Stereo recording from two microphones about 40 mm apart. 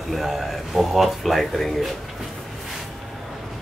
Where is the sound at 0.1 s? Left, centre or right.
Centre.